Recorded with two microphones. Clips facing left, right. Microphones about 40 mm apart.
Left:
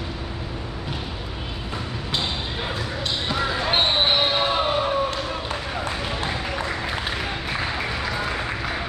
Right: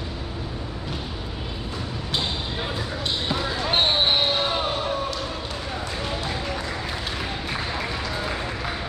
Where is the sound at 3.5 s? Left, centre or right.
Centre.